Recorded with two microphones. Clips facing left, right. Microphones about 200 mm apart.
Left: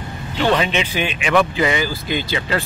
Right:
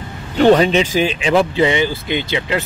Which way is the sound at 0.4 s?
40° right (ahead or behind).